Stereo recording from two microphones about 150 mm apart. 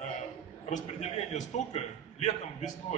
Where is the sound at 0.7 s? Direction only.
50° left (ahead or behind).